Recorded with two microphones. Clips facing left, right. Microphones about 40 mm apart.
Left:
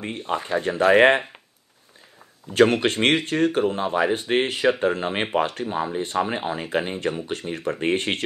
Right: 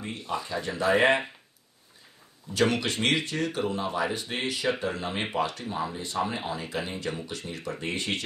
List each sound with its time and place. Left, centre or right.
0.0 s speech: left
2.5 s speech: left